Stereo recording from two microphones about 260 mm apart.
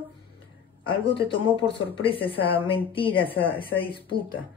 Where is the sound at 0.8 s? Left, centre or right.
Centre.